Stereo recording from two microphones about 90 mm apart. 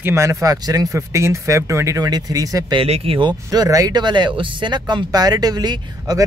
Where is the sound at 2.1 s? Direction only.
45° right (ahead or behind).